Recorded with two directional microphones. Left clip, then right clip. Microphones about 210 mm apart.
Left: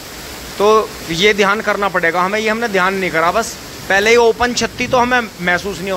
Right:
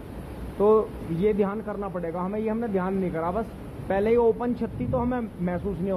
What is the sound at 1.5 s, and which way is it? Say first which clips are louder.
Speech: left 16 dB; 30° left (ahead or behind).